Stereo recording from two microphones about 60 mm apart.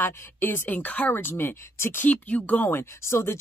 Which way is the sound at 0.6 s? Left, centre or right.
Left.